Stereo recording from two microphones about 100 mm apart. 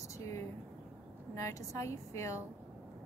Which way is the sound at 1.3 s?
30° left (ahead or behind).